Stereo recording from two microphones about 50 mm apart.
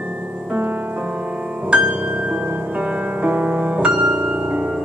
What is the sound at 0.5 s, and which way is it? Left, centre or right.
Music, right.